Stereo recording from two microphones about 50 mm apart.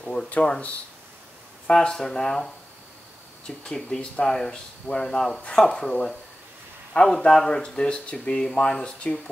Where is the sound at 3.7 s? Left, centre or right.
Centre.